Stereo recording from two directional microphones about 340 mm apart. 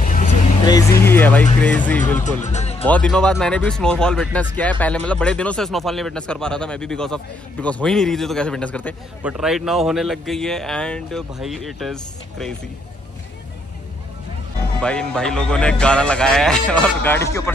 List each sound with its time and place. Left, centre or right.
0.0 s vehicle: left
0.7 s speech: centre
2.4 s speech: centre
2.8 s speech: centre
14.8 s speech: centre